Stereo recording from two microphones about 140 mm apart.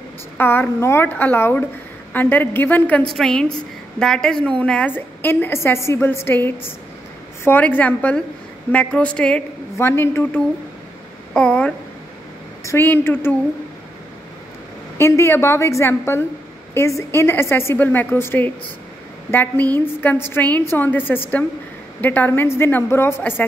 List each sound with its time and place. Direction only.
0.4 s a woman's voice: 15° left (ahead or behind)
9.8 s a woman's voice: 20° left (ahead or behind)
15.0 s a woman's voice: 20° left (ahead or behind)